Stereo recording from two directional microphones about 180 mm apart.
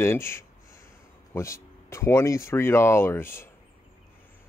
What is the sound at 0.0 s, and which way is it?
Speech, 15° left (ahead or behind).